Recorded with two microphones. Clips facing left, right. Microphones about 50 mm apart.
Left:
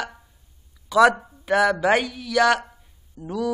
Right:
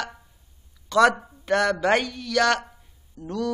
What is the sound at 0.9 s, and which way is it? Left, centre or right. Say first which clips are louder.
A man's voice: left 2 dB; centre.